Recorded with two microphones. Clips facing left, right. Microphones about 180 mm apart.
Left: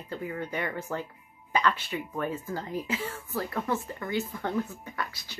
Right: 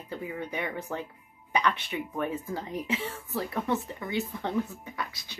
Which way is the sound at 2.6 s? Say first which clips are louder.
Even; 20° right (ahead or behind).